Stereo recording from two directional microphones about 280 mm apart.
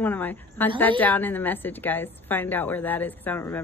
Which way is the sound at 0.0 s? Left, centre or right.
Centre.